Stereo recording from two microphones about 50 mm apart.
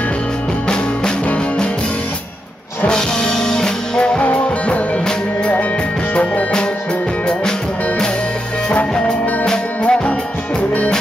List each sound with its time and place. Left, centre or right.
2.9 s music: centre
9.5 s music: left